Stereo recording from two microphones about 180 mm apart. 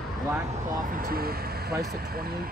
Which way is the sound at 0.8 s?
50° right (ahead or behind).